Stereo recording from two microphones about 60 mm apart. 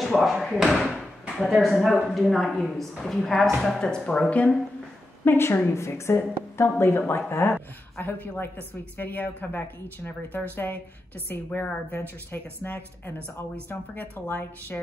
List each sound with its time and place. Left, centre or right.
0.0 s a woman's voice: centre; by 4.6 s left
5.2 s a woman's voice: left